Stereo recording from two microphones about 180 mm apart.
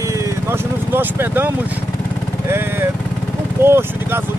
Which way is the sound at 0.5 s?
10° right (ahead or behind).